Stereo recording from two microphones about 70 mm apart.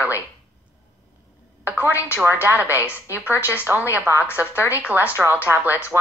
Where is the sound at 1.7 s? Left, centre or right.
Right.